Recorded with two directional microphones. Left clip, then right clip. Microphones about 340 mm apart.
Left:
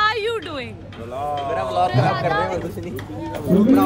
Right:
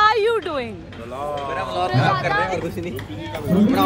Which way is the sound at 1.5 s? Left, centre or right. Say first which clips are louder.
Left 4 dB; left.